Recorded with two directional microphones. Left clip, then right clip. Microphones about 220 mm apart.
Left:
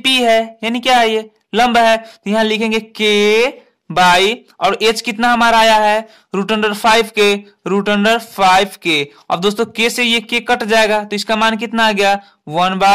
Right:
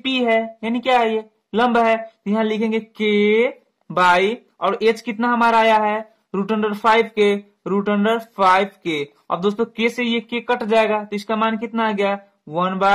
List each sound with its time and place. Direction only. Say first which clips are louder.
0.0 s a woman's voice: left 7 dB; 45° left (ahead or behind)